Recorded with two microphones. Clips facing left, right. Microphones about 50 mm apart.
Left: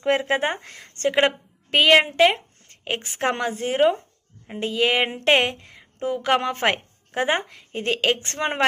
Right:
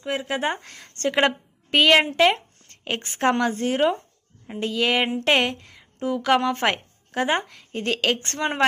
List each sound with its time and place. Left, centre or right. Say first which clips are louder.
0.0 s speech: left 4 dB; left
0.6 s a woman's voice: left 1 dB; centre
2.7 s a sound: left 1 dB; centre
3.2 s a woman's voice: right 4 dB; centre